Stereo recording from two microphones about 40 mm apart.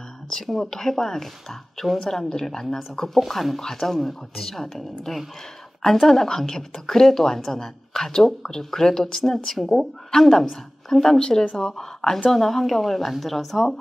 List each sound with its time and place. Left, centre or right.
0.3 s a woman's voice: centre
3.3 s a woman's voice: centre
11.1 s a woman's voice: left; by 13.7 s centre